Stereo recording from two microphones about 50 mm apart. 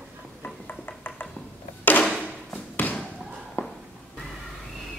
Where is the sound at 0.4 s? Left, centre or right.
Left.